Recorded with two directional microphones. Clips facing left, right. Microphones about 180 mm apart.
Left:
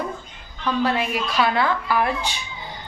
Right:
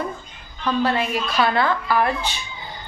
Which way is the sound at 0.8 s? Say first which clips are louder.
Right 1 dB; 10° left (ahead or behind).